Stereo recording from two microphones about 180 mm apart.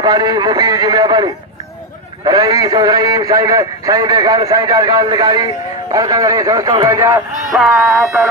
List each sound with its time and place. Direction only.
0.0 s a man's voice: 20° right (ahead or behind)
7.5 s speech: centre (ahead or behind)